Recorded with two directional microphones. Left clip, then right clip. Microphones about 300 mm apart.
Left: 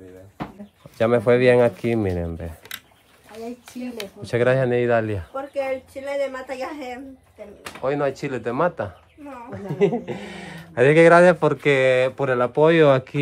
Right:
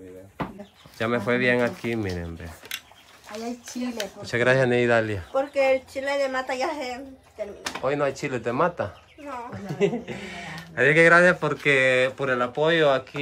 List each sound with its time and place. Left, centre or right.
0.9 s speech: centre
4.2 s speech: centre
5.3 s speech: right; by 6.9 s centre
7.8 s speech: centre; by 13.2 s left